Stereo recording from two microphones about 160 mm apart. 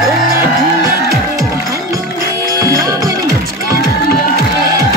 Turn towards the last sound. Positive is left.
turn(degrees=-20)  # may be behind; listen again after turning